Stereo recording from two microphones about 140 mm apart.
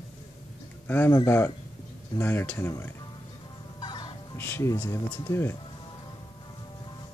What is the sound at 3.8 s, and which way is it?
Fowl, 35° left (ahead or behind).